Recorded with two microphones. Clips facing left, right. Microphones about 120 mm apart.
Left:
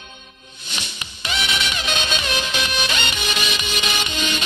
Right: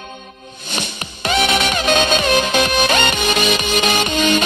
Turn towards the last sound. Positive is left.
turn(degrees=-50)  # may be behind; listen again after turning